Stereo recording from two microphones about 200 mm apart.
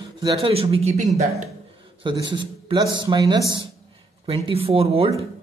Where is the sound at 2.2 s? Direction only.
20° right (ahead or behind).